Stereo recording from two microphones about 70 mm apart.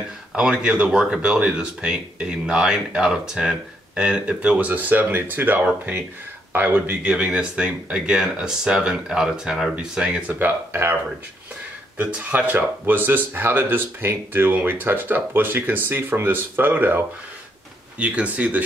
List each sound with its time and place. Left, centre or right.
0.4 s speech: centre
10.4 s speech: right
12.0 s speech: right
17.9 s speech: centre